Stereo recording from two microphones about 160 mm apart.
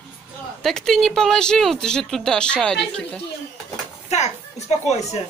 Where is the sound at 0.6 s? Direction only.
5° left (ahead or behind).